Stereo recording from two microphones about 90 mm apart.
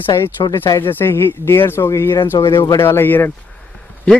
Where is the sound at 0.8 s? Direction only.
25° left (ahead or behind).